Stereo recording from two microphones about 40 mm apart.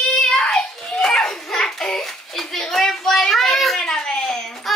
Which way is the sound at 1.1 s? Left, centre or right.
Centre.